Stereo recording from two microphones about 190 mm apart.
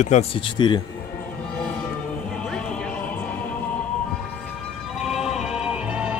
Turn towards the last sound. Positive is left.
turn(degrees=-5)  # may be behind; listen again after turning